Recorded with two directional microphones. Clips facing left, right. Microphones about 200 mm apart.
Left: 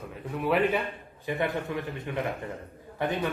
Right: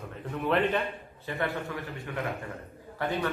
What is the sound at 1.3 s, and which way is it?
A man's voice, 15° left (ahead or behind).